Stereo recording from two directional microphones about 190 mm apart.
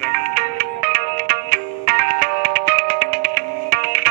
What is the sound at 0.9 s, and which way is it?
Music, 50° right (ahead or behind).